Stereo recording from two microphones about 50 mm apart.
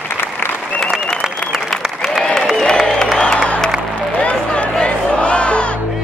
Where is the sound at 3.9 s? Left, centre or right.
Left.